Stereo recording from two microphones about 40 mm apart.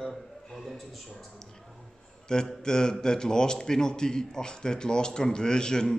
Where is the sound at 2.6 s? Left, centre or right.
Centre.